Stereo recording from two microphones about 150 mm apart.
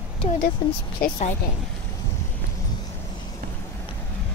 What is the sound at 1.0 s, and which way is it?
Speech, 75° left (ahead or behind).